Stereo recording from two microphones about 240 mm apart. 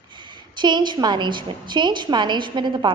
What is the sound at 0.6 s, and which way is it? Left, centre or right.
A woman's voice, centre.